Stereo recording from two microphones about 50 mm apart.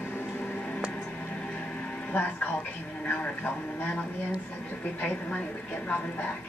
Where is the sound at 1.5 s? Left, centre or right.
Left.